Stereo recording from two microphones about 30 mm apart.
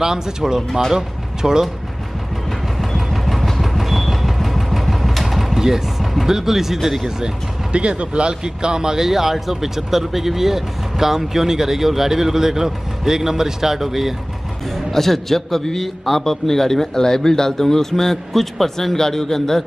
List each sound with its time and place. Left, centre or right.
0.0 s speech: centre
2.8 s vehicle: centre
5.5 s speech: centre
7.7 s speech: right; by 14.1 s centre
14.9 s a man's voice: centre